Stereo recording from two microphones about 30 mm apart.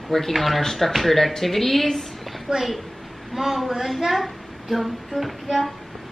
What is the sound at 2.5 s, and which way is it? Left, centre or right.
Speech, right.